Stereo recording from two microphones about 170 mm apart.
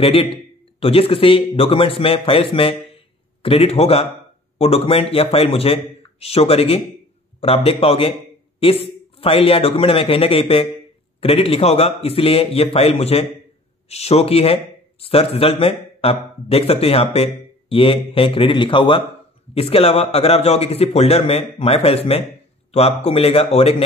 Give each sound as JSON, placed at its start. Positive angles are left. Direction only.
{"t": 0.0, "sound": "speech", "side_deg": 35}